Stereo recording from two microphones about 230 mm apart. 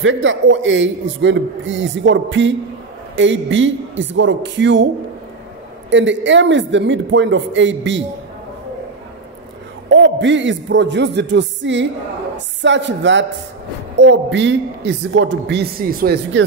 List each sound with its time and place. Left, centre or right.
0.0 s a man's voice: right
5.9 s a man's voice: right
9.8 s a man's voice: right